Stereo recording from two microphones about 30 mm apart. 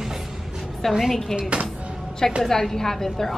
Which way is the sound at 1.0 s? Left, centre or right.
Centre.